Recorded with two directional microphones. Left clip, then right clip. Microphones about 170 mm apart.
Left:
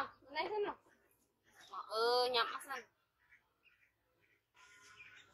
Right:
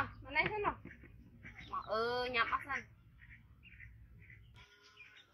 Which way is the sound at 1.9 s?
40° left (ahead or behind).